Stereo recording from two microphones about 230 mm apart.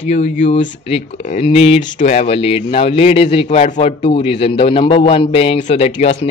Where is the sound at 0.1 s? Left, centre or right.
Left.